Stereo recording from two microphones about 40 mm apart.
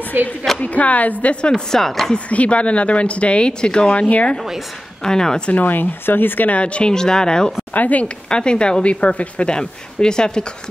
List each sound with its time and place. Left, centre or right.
0.1 s a woman's voice: right
0.6 s speech: left
1.5 s speech: centre
2.1 s speech: left
3.9 s speech: left
5.0 s speech: centre
5.5 s speech: left
6.5 s speech: left
6.9 s speech: centre
7.7 s speech: left
8.3 s speech: left
9.5 s speech: centre